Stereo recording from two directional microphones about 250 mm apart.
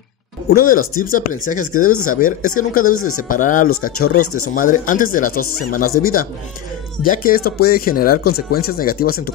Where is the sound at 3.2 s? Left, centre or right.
Left.